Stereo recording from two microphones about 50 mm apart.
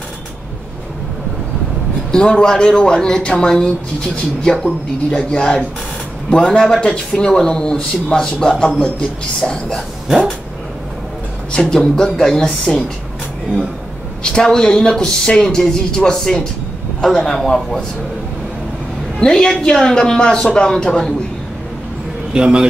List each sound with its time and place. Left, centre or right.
2.1 s a man's voice: centre
11.5 s a man's voice: centre
14.2 s a man's voice: centre
19.1 s a man's voice: centre
22.3 s a man's voice: centre